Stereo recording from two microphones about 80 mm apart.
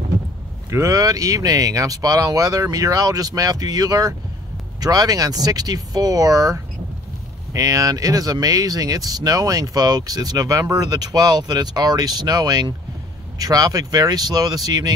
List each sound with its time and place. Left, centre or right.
0.7 s speech: right